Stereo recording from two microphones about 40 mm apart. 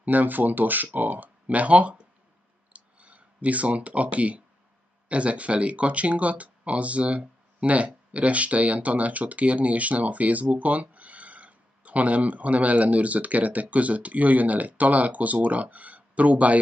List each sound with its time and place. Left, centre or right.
0.0 s speech: right
2.7 s a sound: right
5.0 s speech: right